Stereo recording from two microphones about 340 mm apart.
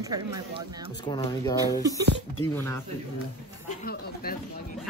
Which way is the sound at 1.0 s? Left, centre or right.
Centre.